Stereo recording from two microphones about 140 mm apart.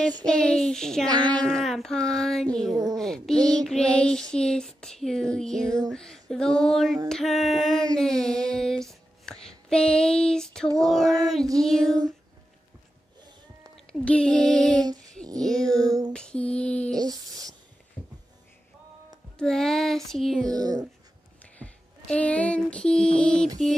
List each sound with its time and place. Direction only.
0.2 s child singing: 5° left (ahead or behind)
1.0 s speech: 30° right (ahead or behind)
1.3 s child singing: 5° left (ahead or behind)
7.1 s a sound: centre (ahead or behind)
11.6 s child singing: 5° left (ahead or behind)
14.0 s child singing: 5° left (ahead or behind)
15.3 s music: 5° left (ahead or behind)
15.6 s child singing: 25° right (ahead or behind)
16.1 s female singing: 5° left (ahead or behind)
16.9 s a sound: 25° right (ahead or behind)
18.0 s a sound: 10° left (ahead or behind)
19.3 s child singing: 5° left (ahead or behind)
20.4 s speech: 25° right (ahead or behind)
21.4 s a sound: 10° left (ahead or behind)